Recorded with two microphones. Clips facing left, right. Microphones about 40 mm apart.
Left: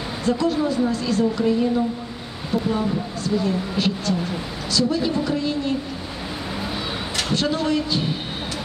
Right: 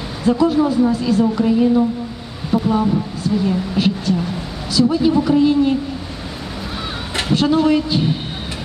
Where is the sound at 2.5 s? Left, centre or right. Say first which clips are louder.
Right 6 dB; centre.